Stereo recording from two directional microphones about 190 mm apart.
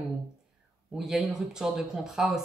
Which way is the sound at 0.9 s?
Centre (ahead or behind).